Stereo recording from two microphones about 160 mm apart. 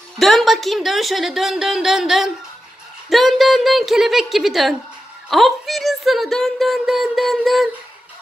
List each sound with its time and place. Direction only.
0.2 s speech: centre (ahead or behind)